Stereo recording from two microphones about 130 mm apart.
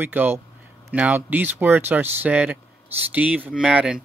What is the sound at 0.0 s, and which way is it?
Speech, 15° right (ahead or behind).